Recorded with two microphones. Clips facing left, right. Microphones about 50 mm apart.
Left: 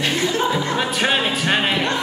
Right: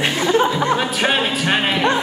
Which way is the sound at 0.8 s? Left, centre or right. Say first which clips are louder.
Right 1 dB; centre.